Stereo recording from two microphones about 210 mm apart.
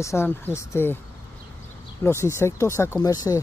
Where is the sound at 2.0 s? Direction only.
10° left (ahead or behind).